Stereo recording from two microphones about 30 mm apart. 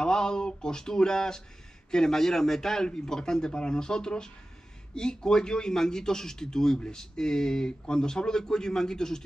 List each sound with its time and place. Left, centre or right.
0.0 s a man's voice: left